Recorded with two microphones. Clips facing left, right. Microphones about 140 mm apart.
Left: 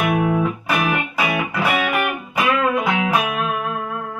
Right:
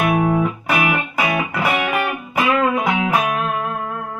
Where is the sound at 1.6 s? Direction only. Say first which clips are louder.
Left 1 dB; 15° right (ahead or behind).